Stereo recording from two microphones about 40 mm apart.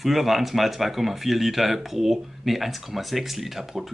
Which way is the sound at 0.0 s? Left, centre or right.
Centre.